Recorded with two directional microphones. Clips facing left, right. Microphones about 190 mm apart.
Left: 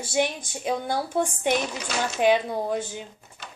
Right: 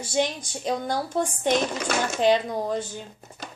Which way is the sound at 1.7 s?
50° right (ahead or behind).